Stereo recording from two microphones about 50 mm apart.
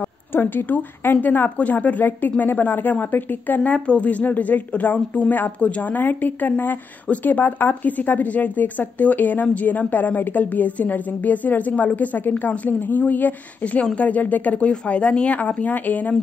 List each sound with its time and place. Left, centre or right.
0.3 s speech: left
3.7 s speech: left